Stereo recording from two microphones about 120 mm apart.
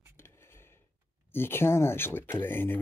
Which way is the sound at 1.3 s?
20° left (ahead or behind).